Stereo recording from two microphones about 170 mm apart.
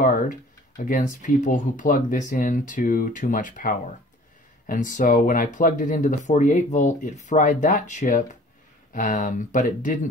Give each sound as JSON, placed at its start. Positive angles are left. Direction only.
{"t": 0.8, "sound": "speech", "side_deg": 50}